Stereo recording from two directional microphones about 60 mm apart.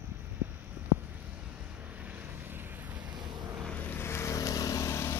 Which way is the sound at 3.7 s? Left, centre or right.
Left.